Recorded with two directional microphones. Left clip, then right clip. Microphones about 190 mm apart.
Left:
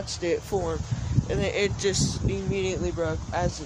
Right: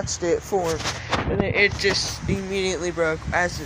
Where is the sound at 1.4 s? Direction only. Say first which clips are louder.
Right 5 dB; 15° left (ahead or behind).